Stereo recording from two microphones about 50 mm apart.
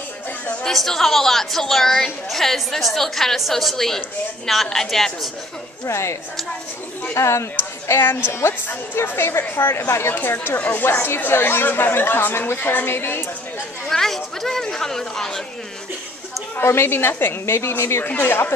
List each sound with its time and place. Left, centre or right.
0.7 s a woman's voice: centre
5.9 s speech: left
7.2 s speech: left
7.5 s a woman's voice: left
10.1 s speech: left
10.9 s a woman's voice: left
13.8 s a woman's voice: centre
16.5 s a woman's voice: left
18.0 s a woman's voice: left